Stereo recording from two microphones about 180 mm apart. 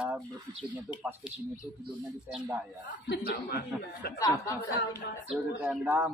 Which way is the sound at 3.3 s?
65° left (ahead or behind).